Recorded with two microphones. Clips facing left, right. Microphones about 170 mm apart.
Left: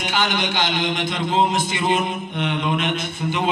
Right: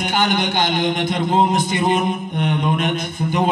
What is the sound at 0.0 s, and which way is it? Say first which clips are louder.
A man's voice: right 4 dB; 50° right (ahead or behind).